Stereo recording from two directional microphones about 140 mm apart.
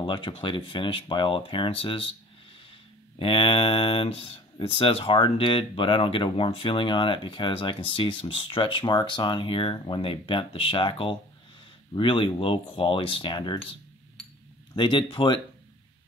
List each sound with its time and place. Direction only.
0.0 s speech: 35° left (ahead or behind)
3.2 s speech: 40° left (ahead or behind)
14.8 s speech: 35° left (ahead or behind)